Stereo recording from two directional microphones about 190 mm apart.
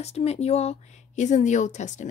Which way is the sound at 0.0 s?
35° left (ahead or behind).